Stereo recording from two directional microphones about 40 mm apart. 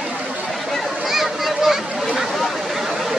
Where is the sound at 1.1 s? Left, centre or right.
Centre.